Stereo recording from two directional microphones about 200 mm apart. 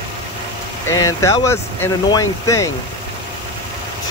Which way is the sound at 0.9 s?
15° left (ahead or behind).